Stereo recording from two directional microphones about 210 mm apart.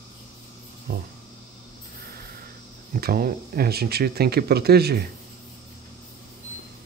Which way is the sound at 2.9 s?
45° right (ahead or behind).